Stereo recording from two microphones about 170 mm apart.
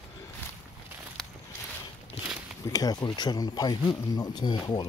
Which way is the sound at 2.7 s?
20° left (ahead or behind).